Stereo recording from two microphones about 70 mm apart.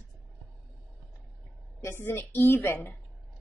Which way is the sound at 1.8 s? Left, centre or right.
Left.